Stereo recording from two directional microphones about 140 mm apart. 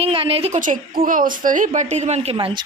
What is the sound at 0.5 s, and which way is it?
A woman's voice, 75° right (ahead or behind).